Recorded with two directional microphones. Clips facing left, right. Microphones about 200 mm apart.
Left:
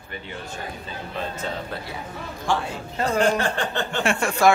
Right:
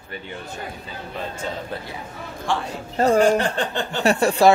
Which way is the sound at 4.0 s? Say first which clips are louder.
Right 5 dB; 35° right (ahead or behind).